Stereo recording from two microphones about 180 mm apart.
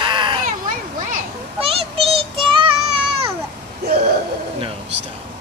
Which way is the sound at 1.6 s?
30° right (ahead or behind).